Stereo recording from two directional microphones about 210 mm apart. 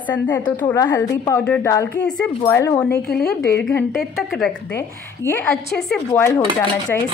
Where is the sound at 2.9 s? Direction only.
50° left (ahead or behind).